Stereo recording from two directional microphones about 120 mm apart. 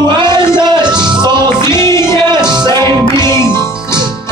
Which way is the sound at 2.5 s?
40° right (ahead or behind).